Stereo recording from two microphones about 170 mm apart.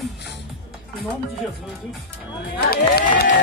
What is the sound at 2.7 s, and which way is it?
Speech, 65° left (ahead or behind).